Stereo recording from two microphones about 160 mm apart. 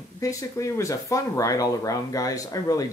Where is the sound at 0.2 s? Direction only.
20° left (ahead or behind).